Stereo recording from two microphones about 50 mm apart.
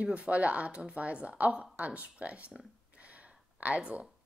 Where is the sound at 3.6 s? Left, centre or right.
Right.